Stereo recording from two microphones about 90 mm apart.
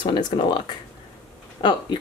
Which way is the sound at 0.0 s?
60° left (ahead or behind).